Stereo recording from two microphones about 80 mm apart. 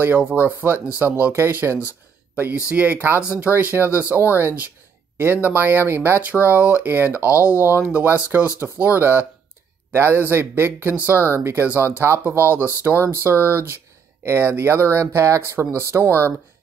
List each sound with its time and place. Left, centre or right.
0.2 s speech: centre
3.4 s speech: right
7.2 s speech: left
7.8 s speech: right
15.5 s speech: right
16.0 s speech: left